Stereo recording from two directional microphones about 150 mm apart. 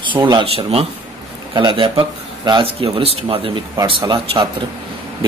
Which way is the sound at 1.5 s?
30° right (ahead or behind).